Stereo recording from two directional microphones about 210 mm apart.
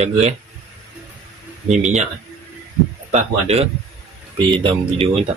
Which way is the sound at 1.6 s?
35° right (ahead or behind).